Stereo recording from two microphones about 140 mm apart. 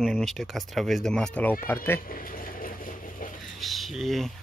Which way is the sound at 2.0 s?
85° left.